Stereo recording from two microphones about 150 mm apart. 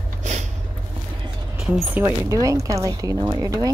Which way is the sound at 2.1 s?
25° right (ahead or behind).